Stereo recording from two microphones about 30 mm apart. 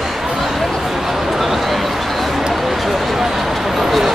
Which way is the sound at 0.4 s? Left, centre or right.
Centre.